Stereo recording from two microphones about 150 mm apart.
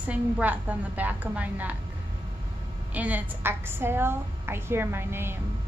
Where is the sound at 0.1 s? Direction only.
10° right (ahead or behind).